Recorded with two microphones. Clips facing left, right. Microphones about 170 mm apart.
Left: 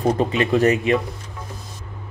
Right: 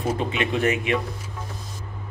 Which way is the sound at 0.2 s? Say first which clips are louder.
Left 6 dB; 35° left (ahead or behind).